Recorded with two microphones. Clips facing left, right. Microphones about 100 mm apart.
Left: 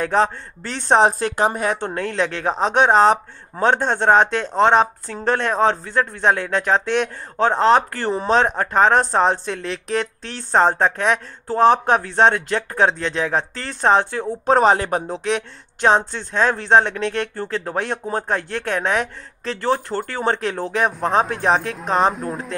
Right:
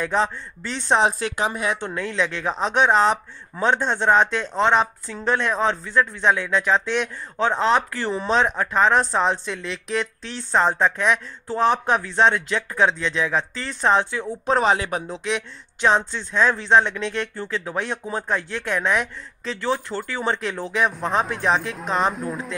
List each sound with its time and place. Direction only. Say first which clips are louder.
0.0 s speech: left 4 dB; 50° left (ahead or behind)
22.1 s speech: left 2 dB; centre (ahead or behind)